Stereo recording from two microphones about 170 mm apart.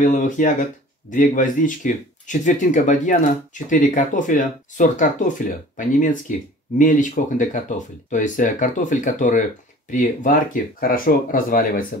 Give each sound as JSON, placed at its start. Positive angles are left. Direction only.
{"t": 0.0, "sound": "speech", "side_deg": 50}